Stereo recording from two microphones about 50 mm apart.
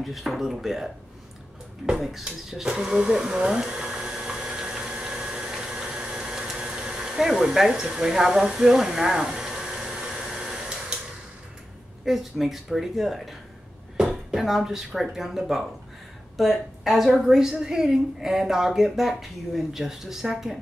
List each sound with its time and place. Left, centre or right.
0.0 s speech: centre
2.2 s hair dryer: centre
7.9 s speech: centre
10.2 s a sound: centre
12.0 s a woman's voice: centre